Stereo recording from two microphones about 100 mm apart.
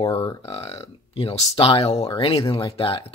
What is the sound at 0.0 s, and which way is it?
Speech, 40° left (ahead or behind).